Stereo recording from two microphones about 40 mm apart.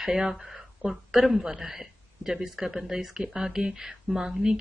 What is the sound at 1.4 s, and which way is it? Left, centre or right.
A man's voice, centre.